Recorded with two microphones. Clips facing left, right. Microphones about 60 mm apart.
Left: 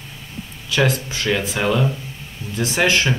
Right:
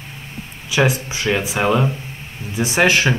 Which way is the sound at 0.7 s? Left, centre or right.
Centre.